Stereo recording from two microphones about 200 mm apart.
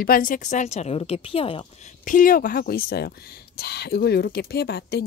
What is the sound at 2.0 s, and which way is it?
Speech, 45° left (ahead or behind).